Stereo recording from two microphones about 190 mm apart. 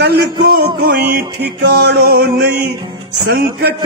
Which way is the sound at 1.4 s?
55° right (ahead or behind).